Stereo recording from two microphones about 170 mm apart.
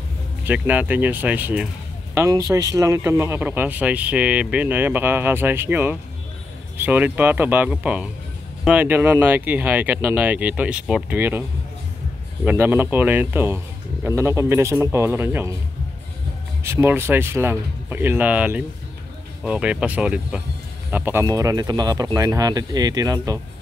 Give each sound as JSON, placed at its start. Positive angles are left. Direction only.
{"t": 0.5, "sound": "speech", "side_deg": -10}
{"t": 2.1, "sound": "speech", "side_deg": -20}
{"t": 12.4, "sound": "speech", "side_deg": -10}
{"t": 16.6, "sound": "speech", "side_deg": -15}